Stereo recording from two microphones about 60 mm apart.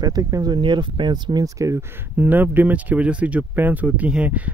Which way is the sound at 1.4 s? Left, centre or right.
Right.